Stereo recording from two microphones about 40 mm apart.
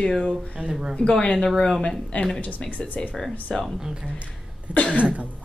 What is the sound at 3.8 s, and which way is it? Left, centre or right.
Speech, centre.